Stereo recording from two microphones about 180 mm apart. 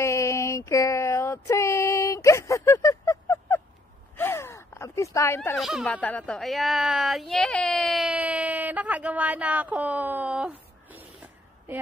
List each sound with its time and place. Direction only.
0.0 s a sound: 15° left (ahead or behind)
4.2 s gasp: 15° left (ahead or behind)
5.6 s speech: centre (ahead or behind)